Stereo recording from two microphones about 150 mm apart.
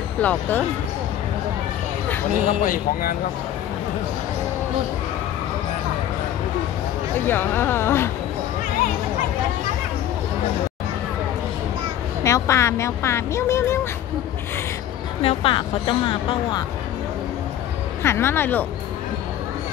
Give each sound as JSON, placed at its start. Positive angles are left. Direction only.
{"t": 0.2, "sound": "speech", "side_deg": 10}
{"t": 2.6, "sound": "speech", "side_deg": 70}
{"t": 7.2, "sound": "speech", "side_deg": 15}
{"t": 12.2, "sound": "speech", "side_deg": 20}
{"t": 15.2, "sound": "speech", "side_deg": 35}
{"t": 18.0, "sound": "speech", "side_deg": 15}